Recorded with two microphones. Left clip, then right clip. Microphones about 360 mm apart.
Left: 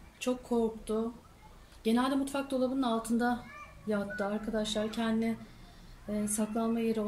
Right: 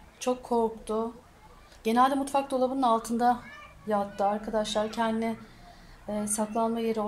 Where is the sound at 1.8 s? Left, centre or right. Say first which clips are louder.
Right 7 dB; centre.